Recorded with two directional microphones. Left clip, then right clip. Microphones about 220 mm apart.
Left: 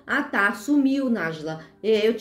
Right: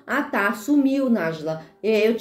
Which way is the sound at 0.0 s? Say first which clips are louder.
Even; 5° left (ahead or behind).